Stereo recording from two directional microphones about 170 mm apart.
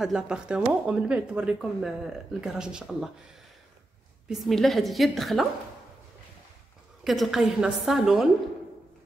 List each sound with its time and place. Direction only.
0.0 s speech: 5° right (ahead or behind)
4.3 s speech: centre (ahead or behind)
7.1 s speech: centre (ahead or behind)